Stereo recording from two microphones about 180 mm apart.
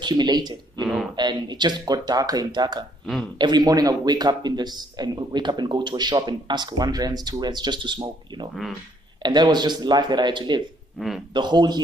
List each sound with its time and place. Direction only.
0.0 s speech: 25° right (ahead or behind)
11.0 s speech: centre (ahead or behind)
11.3 s speech: 25° right (ahead or behind)